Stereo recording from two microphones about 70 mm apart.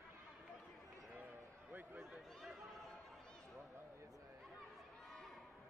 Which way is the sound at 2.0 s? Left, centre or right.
Centre.